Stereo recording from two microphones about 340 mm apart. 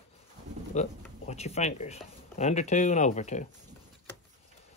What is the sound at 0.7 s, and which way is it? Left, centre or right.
Speech, centre.